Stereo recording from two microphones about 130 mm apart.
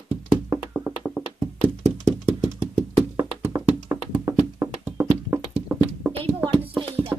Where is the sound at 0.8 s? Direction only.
Centre (ahead or behind).